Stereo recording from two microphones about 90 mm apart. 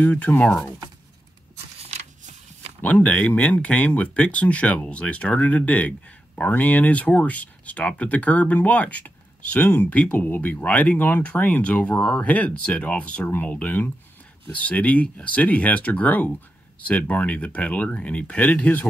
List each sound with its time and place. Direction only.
0.0 s speech: 15° left (ahead or behind)
2.8 s speech: 15° left (ahead or behind)